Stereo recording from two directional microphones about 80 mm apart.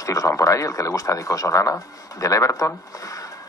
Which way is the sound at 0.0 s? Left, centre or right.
Left.